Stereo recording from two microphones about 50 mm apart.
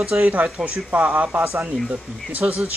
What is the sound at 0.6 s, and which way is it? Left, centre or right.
Speech, right.